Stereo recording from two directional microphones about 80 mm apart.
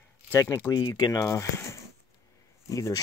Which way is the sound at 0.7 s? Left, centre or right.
Left.